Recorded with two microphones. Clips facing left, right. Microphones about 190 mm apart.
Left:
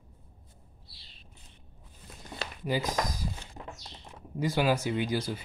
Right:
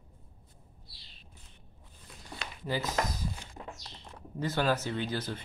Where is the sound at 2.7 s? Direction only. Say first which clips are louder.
Left 2 dB; 15° left (ahead or behind).